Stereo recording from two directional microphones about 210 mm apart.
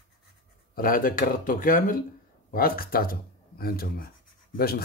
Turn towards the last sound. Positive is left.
turn(degrees=45)  # may be behind; listen again after turning